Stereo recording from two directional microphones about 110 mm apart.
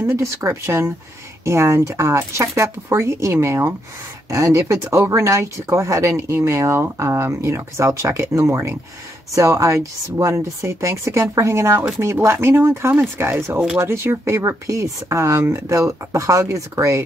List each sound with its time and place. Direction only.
0.0 s speech: 25° right (ahead or behind)